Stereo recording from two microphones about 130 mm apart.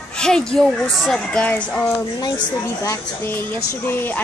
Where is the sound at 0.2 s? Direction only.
5° left (ahead or behind).